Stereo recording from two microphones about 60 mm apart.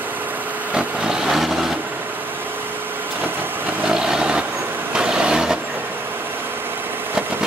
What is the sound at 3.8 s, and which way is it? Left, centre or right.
Vehicle, centre.